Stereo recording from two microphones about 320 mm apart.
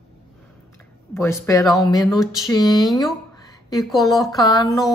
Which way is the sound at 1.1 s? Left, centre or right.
Centre.